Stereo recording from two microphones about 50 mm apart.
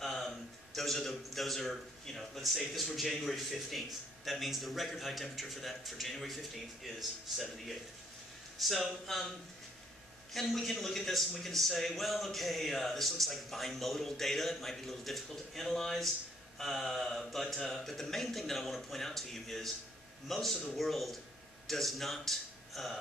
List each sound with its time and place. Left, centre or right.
0.0 s a sound: centre
0.7 s a man's voice: centre
10.3 s a man's voice: centre